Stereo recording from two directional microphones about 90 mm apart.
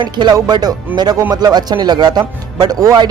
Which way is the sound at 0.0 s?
55° right (ahead or behind).